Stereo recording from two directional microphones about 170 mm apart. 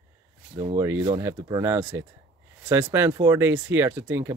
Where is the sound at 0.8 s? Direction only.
15° right (ahead or behind).